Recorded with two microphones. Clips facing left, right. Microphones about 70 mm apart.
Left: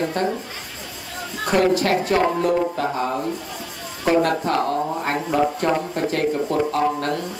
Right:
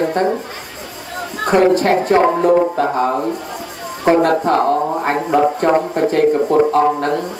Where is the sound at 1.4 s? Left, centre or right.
Right.